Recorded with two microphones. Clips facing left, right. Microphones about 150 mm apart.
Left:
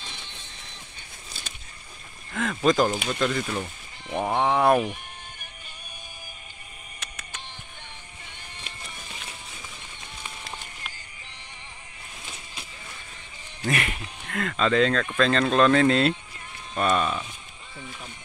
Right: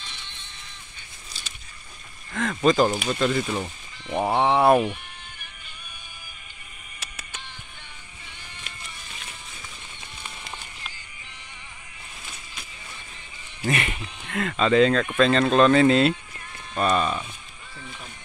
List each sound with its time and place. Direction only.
2.3 s speech: centre (ahead or behind)
7.0 s music: 5° right (ahead or behind)
13.6 s speech: centre (ahead or behind)